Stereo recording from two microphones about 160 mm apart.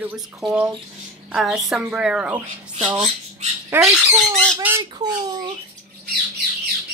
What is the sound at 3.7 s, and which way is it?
Speech, 15° right (ahead or behind).